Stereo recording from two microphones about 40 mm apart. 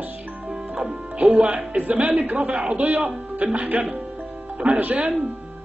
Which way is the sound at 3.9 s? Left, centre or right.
Right.